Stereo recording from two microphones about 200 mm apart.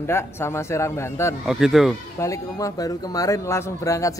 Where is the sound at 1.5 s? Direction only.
Centre (ahead or behind).